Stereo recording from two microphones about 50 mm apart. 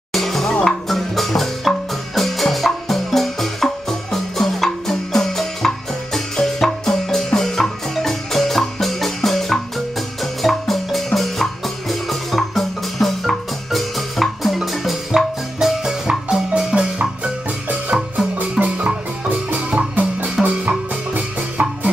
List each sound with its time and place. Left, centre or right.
0.1 s music: centre
18.6 s music: centre
19.2 s music: right